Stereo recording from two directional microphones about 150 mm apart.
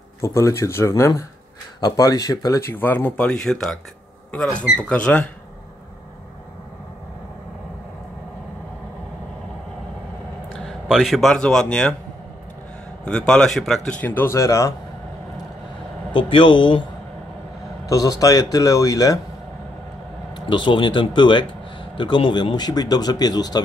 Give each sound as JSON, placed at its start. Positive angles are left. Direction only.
{"t": 0.2, "sound": "speech", "side_deg": 20}
{"t": 10.6, "sound": "speech", "side_deg": 0}
{"t": 13.0, "sound": "speech", "side_deg": 5}
{"t": 14.0, "sound": "speech", "side_deg": 15}
{"t": 16.1, "sound": "speech", "side_deg": 35}
{"t": 17.8, "sound": "speech", "side_deg": 25}
{"t": 20.3, "sound": "speech", "side_deg": 35}